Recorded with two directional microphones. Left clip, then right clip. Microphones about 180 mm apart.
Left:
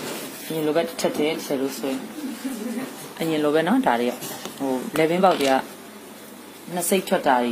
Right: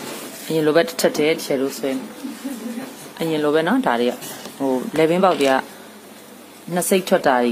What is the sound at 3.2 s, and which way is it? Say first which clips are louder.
Speech: right 2 dB; 20° right (ahead or behind).